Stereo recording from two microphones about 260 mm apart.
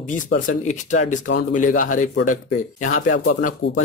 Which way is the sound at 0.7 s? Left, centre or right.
Left.